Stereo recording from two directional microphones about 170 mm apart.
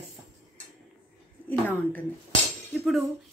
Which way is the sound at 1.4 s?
10° left (ahead or behind).